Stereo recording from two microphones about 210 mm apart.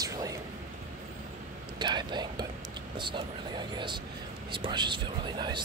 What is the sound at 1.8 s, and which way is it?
Speech, 20° right (ahead or behind).